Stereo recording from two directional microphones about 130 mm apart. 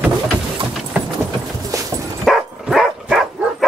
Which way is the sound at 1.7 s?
25° right (ahead or behind).